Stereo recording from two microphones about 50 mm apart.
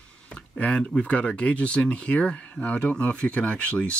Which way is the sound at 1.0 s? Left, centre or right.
Left.